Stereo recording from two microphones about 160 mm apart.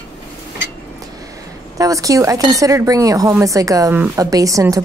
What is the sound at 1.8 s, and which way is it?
Speech, 20° right (ahead or behind).